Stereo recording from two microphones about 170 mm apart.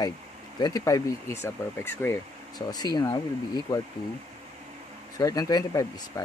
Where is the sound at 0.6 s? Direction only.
25° left (ahead or behind).